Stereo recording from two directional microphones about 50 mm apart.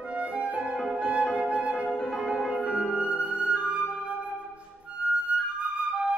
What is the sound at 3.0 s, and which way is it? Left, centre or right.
Music, right.